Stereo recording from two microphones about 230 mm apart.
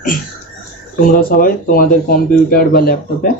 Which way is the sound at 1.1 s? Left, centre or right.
Left.